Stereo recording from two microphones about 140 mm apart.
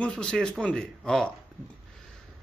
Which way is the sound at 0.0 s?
5° left (ahead or behind).